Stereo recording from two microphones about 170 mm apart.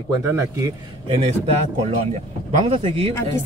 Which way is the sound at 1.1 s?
35° right (ahead or behind).